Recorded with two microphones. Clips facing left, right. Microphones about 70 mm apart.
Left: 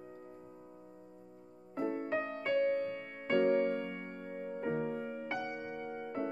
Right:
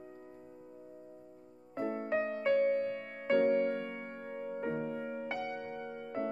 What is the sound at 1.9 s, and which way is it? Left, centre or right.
Music, centre.